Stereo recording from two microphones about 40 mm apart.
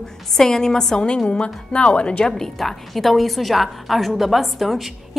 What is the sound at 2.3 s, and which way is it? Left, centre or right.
A woman's voice, centre.